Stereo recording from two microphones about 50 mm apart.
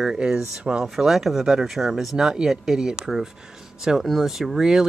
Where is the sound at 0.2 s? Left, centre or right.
Centre.